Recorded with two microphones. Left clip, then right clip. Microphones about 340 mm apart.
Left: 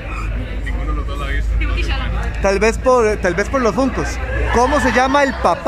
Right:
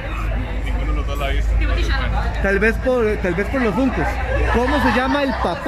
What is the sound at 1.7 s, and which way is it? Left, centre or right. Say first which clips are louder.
Speech: even; centre.